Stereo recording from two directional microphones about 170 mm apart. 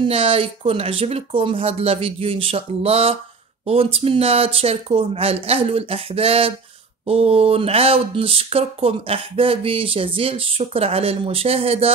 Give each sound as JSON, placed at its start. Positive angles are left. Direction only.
{"t": 0.0, "sound": "speech", "side_deg": -30}